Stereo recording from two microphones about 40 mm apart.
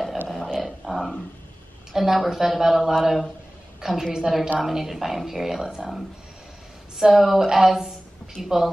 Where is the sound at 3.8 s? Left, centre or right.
Centre.